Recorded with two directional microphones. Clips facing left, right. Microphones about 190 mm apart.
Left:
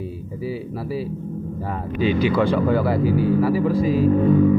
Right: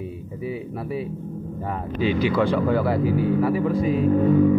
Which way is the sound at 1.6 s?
5° left (ahead or behind).